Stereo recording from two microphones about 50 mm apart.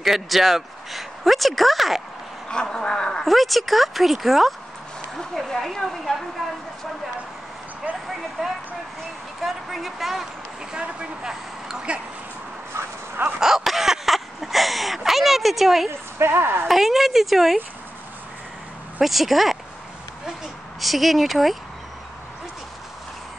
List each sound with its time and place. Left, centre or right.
0.0 s speech: centre
2.4 s speech: centre
3.3 s speech: centre
9.4 s a sound: centre
10.7 s vehicle: centre
12.7 s dog: right
13.4 s a sound: centre
15.9 s a woman's voice: right
16.6 s speech: centre
18.9 s speech: centre
20.8 s speech: centre